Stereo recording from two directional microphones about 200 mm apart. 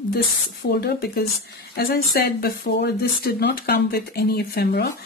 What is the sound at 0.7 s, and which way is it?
Speech, 55° left (ahead or behind).